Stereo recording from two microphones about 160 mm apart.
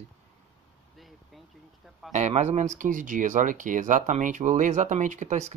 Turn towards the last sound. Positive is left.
turn(degrees=-50)  # may be behind; listen again after turning